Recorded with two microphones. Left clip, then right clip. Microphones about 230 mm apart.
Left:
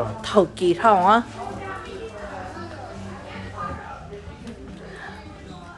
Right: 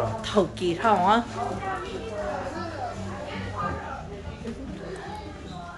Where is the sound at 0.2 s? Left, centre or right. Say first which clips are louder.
Left 9 dB; left.